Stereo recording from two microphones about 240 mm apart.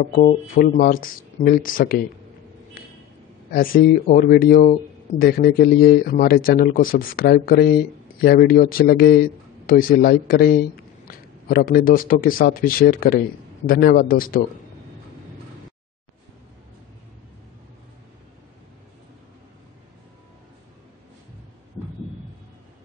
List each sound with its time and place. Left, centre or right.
0.0 s speech: left
2.8 s a sound: left
3.5 s speech: left